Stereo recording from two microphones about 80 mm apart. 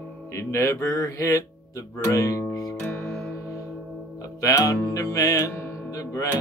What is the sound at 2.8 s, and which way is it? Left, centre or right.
Music, centre.